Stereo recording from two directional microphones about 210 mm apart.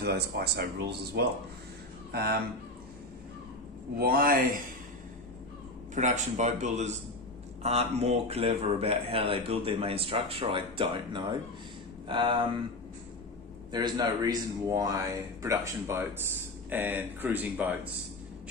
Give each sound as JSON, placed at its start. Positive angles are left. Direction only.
{"t": 0.0, "sound": "speech", "side_deg": -50}
{"t": 4.0, "sound": "speech", "side_deg": -45}
{"t": 5.9, "sound": "speech", "side_deg": -35}
{"t": 13.7, "sound": "speech", "side_deg": -20}